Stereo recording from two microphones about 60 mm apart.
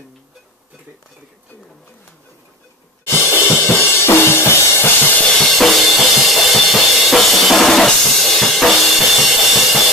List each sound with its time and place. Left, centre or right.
3.1 s cymbal: left
3.7 s drum kit: left
5.6 s drum kit: centre